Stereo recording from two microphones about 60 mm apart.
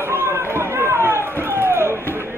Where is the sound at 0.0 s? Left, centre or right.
Right.